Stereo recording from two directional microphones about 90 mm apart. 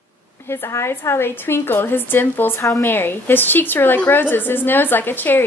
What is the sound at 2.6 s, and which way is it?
Speech, 35° left (ahead or behind).